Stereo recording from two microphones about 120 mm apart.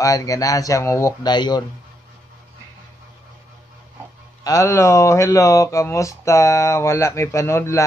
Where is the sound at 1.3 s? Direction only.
35° left (ahead or behind).